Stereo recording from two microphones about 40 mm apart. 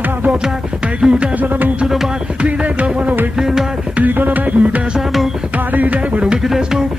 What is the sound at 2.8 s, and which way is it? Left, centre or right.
Music, right.